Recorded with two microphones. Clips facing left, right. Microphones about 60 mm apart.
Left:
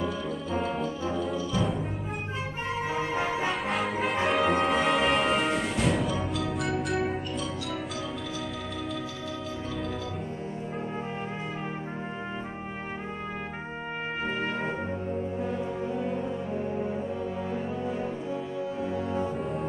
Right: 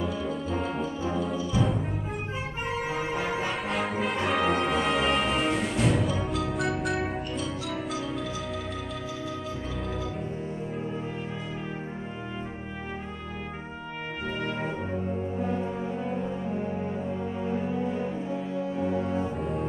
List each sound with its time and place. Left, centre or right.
0.0 s music: centre
2.9 s music: right
3.6 s music: centre
14.6 s music: centre
17.6 s music: centre
18.9 s music: centre